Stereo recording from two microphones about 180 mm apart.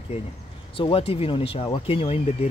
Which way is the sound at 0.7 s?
30° left (ahead or behind).